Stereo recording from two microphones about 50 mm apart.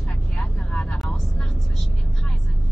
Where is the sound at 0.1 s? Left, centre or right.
Left.